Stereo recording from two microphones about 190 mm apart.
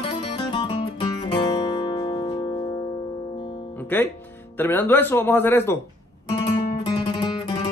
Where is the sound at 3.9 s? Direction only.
10° left (ahead or behind).